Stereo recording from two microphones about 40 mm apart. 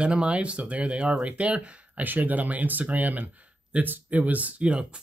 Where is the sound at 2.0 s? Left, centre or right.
Right.